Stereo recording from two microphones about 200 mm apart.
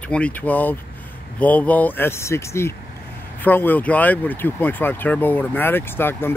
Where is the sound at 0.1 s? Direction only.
5° left (ahead or behind).